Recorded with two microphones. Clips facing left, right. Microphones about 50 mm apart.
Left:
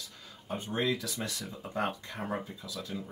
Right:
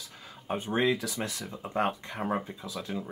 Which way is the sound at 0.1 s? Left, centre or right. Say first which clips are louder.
Right 6 dB; right.